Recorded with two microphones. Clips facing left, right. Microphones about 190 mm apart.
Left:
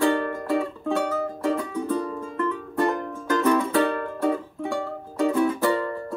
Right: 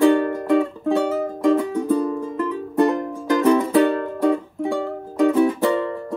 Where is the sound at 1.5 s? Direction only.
25° right (ahead or behind).